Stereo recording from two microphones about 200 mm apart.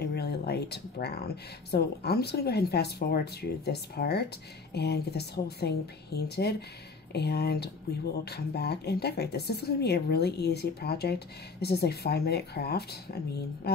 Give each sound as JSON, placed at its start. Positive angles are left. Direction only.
{"t": 0.0, "sound": "speech", "side_deg": 55}